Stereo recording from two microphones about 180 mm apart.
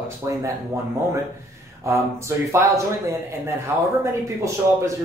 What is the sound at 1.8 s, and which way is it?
Speech, 15° right (ahead or behind).